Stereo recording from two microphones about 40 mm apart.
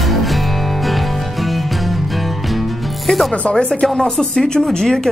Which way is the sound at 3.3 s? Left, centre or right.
Left.